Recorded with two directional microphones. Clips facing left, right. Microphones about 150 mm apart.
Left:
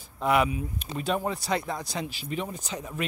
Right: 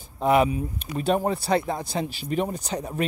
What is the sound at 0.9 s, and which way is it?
Speech, 35° right (ahead or behind).